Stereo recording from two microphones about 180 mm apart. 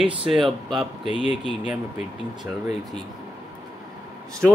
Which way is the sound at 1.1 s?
30° left (ahead or behind).